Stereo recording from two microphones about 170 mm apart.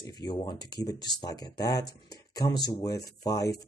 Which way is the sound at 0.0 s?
25° left (ahead or behind).